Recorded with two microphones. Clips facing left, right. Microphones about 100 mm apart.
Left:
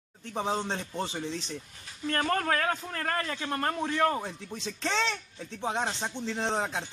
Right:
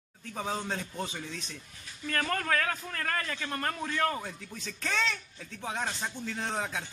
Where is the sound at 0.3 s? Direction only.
25° left (ahead or behind).